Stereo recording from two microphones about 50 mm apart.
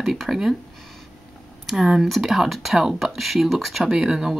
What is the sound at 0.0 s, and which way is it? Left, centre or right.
Speech, centre.